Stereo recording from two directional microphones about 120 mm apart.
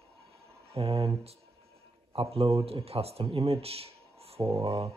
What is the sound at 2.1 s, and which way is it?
Speech, 55° right (ahead or behind).